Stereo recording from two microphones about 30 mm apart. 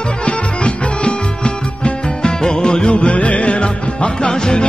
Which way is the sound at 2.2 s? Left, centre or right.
Left.